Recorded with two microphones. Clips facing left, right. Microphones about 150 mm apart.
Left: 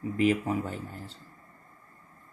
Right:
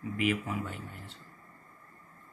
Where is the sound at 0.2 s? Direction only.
35° left (ahead or behind).